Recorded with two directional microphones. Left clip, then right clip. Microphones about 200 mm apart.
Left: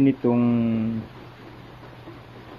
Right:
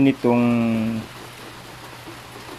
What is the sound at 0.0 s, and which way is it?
Speech, 20° right (ahead or behind).